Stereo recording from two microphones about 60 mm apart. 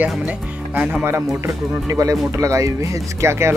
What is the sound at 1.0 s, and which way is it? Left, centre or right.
Speech, right.